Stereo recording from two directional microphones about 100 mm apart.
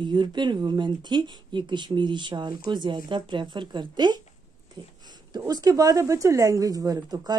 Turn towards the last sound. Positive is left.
turn(degrees=-40)  # may be behind; listen again after turning